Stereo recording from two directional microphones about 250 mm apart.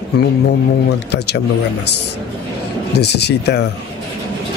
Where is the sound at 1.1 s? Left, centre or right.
Left.